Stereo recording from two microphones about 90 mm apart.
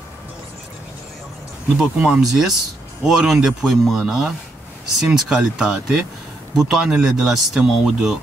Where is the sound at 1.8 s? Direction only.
10° right (ahead or behind).